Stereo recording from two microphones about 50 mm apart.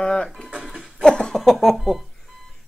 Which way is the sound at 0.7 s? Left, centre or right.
Centre.